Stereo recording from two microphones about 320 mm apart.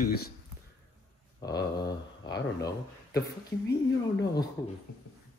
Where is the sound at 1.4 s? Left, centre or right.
Centre.